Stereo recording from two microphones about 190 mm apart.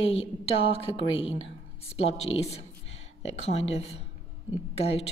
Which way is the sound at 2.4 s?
35° left (ahead or behind).